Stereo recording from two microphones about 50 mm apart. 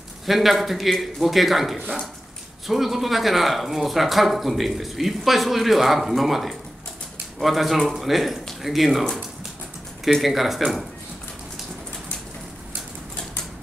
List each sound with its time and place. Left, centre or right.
0.3 s speech: centre
10.0 s speech: centre